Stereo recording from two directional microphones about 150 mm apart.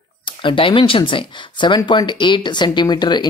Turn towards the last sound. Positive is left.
turn(degrees=30)  # may be behind; listen again after turning